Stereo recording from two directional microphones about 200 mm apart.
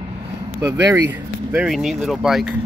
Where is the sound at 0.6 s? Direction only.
15° right (ahead or behind).